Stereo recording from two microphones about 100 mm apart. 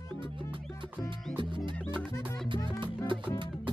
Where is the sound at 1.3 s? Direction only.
55° right (ahead or behind).